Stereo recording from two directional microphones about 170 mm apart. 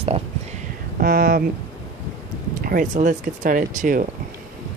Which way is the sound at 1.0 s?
60° right (ahead or behind).